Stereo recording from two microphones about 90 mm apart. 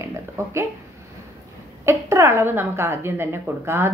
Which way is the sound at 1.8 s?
30° right (ahead or behind).